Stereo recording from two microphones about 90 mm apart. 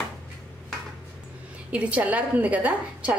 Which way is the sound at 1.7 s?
15° right (ahead or behind).